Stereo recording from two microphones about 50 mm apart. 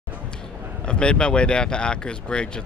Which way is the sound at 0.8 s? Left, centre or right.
Centre.